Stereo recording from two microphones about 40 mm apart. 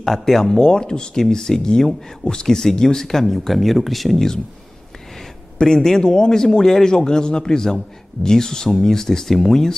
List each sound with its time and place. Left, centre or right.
0.0 s a man's voice: centre
5.6 s a man's voice: centre